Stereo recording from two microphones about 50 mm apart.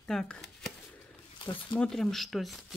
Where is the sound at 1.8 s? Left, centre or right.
Centre.